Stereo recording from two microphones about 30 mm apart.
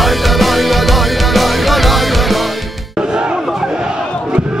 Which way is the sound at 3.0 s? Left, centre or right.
Right.